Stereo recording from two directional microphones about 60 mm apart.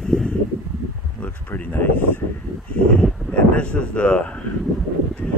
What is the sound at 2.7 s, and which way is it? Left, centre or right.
Speech, centre.